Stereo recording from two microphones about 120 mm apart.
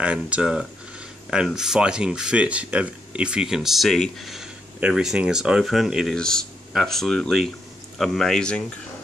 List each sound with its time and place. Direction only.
0.0 s speech: 10° right (ahead or behind); by 8.6 s 5° left (ahead or behind)